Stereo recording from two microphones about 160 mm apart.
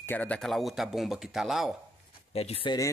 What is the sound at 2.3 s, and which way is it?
Speech, 40° left (ahead or behind).